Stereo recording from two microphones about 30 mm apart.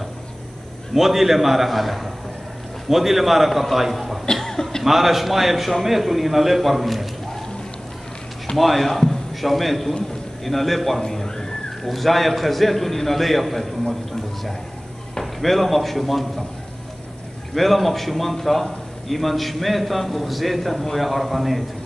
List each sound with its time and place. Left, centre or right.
0.9 s a man's voice: centre
4.4 s cough: centre
4.8 s a man's voice: centre
8.5 s a man's voice: centre
11.2 s a sound: centre
11.8 s a man's voice: centre
15.4 s a man's voice: centre
17.6 s a man's voice: centre